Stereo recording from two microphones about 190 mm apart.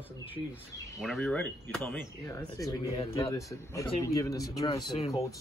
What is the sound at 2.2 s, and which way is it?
A man's voice, 15° left (ahead or behind).